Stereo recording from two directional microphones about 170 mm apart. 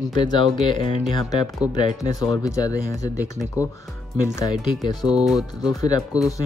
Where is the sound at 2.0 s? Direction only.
20° left (ahead or behind).